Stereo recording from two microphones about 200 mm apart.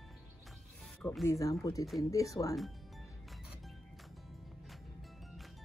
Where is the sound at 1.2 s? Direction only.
15° left (ahead or behind).